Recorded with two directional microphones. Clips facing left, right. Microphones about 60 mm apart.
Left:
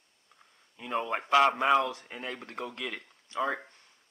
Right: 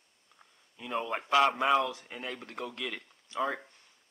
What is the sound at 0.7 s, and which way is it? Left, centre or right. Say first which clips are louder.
Speech: left 2 dB; centre.